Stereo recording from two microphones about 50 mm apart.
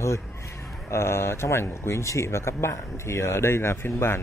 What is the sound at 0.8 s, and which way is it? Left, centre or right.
A man's voice, left.